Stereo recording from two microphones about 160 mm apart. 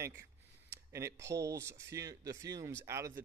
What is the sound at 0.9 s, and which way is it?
Speech, 20° right (ahead or behind).